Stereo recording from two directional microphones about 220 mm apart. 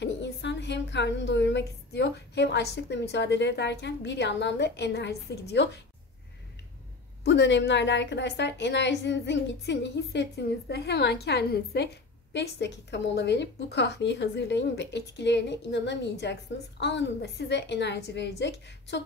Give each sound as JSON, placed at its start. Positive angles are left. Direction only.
{"t": 0.0, "sound": "a woman's voice", "side_deg": 55}
{"t": 7.2, "sound": "a woman's voice", "side_deg": 55}